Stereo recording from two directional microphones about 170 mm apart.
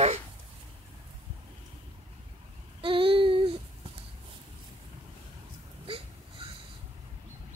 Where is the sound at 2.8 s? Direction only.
30° right (ahead or behind).